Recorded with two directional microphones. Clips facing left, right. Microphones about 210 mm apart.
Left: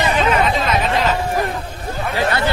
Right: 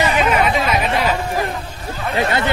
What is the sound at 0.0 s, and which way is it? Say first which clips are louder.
Chatter: even; 10° right (ahead or behind).